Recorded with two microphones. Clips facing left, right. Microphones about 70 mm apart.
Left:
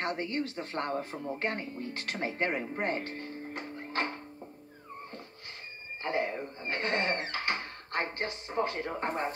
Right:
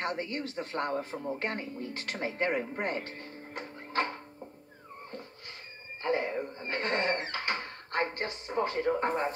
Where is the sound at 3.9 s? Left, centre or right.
Left.